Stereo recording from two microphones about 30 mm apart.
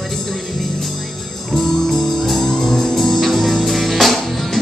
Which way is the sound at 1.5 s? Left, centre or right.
Centre.